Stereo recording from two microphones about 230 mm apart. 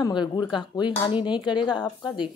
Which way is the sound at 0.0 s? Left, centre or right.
Centre.